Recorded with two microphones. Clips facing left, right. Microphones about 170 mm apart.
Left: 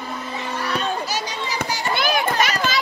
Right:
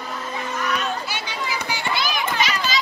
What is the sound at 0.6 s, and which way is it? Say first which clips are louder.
Children playing: left 2 dB; 35° left (ahead or behind).